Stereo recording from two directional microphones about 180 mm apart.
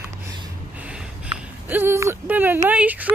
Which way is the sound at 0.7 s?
5° right (ahead or behind).